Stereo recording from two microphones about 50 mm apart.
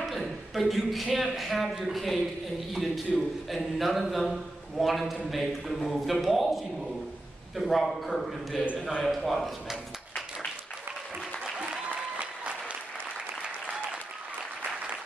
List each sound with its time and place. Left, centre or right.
0.0 s a man's voice: centre
11.5 s applause: right